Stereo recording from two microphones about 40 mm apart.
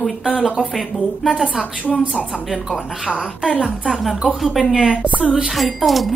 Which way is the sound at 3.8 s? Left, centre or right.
Centre.